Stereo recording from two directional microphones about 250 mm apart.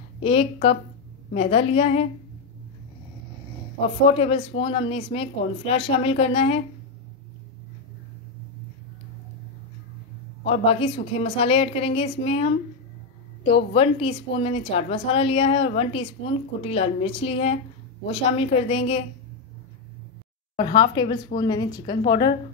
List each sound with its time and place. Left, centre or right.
0.2 s a woman's voice: left
4.0 s a woman's voice: left
10.4 s a woman's voice: left
20.5 s a woman's voice: centre